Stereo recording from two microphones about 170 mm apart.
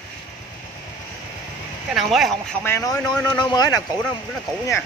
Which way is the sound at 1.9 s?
Centre (ahead or behind).